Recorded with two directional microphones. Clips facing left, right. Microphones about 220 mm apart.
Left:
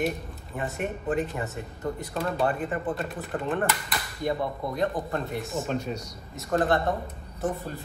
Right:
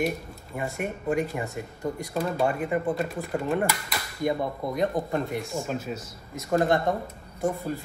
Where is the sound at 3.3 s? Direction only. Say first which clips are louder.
Right 2 dB; 10° right (ahead or behind).